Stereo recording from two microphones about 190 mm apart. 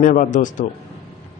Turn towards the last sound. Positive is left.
turn(degrees=40)  # may be behind; listen again after turning